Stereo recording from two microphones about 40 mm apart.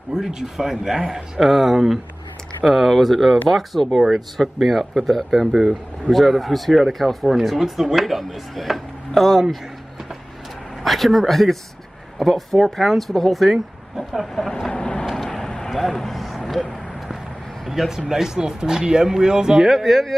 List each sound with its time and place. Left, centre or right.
0.1 s speech: centre
10.8 s speech: centre
14.7 s vehicle: left
15.7 s vehicle: centre
17.6 s speech: centre
19.7 s speech: centre